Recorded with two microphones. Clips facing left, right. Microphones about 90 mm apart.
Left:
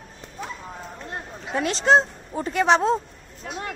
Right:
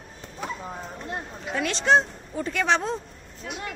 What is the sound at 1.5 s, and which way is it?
A woman's voice, 35° left (ahead or behind).